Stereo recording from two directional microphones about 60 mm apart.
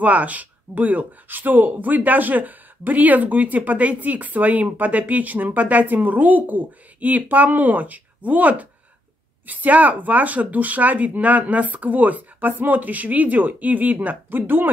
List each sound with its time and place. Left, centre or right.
0.0 s speech: right